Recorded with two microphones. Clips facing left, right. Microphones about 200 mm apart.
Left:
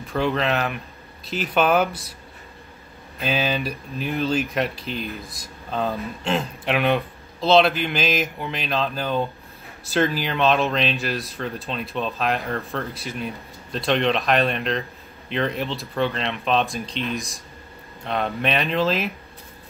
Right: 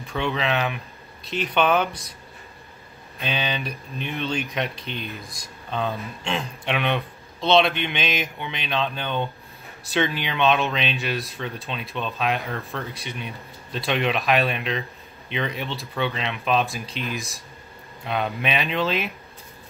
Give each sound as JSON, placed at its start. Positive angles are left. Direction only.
{"t": 0.0, "sound": "speech", "side_deg": 0}
{"t": 3.2, "sound": "speech", "side_deg": 5}